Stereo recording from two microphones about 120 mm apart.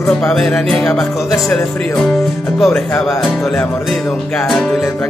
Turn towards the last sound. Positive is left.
turn(degrees=5)  # may be behind; listen again after turning